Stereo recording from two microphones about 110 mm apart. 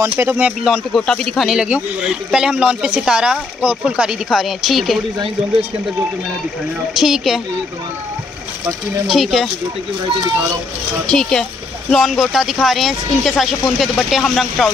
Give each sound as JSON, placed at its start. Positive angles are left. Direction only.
{"t": 0.0, "sound": "speech", "side_deg": -25}
{"t": 0.7, "sound": "speech", "side_deg": 5}
{"t": 6.9, "sound": "speech", "side_deg": -5}
{"t": 9.0, "sound": "speech", "side_deg": 0}
{"t": 11.1, "sound": "speech", "side_deg": 5}